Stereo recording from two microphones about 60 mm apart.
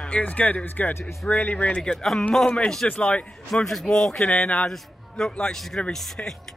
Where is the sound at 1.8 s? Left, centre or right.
Centre.